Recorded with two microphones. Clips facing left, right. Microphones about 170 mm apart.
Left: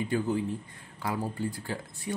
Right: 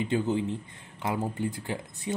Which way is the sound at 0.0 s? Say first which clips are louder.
Right 2 dB; 25° right (ahead or behind).